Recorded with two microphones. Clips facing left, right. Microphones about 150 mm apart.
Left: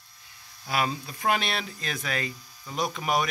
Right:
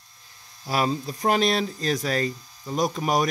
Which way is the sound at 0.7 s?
35° right (ahead or behind).